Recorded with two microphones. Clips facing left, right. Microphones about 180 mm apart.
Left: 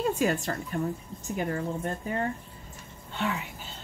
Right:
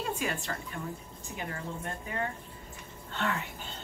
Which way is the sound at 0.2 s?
40° left (ahead or behind).